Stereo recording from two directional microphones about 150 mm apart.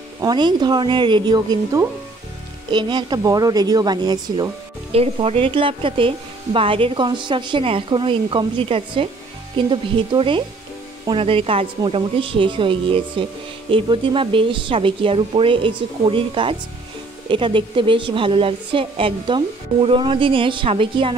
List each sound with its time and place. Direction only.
0.2 s speech: 30° right (ahead or behind)
4.9 s a woman's voice: 40° right (ahead or behind)